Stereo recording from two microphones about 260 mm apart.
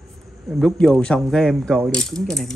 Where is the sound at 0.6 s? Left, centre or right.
Centre.